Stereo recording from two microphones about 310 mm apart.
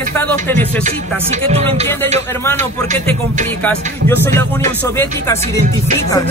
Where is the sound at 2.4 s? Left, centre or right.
Centre.